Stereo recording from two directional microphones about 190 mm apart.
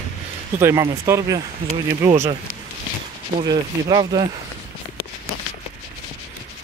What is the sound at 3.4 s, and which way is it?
Speech, 20° right (ahead or behind).